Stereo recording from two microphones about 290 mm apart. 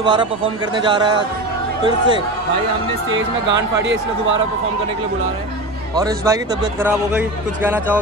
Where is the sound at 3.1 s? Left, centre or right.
Right.